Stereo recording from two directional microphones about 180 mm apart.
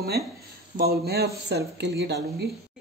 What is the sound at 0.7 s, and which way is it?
Speech, 60° right (ahead or behind).